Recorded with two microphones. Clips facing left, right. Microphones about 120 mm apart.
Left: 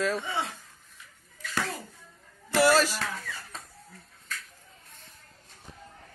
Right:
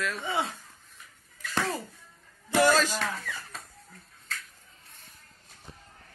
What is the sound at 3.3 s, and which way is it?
Speech, 85° right.